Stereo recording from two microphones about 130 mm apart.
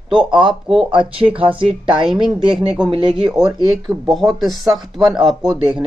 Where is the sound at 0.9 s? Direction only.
40° right (ahead or behind).